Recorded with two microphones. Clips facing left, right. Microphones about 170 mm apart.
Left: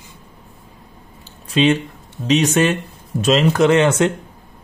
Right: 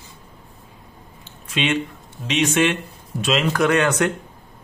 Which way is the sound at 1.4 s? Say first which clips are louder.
Left 7 dB; 35° left (ahead or behind).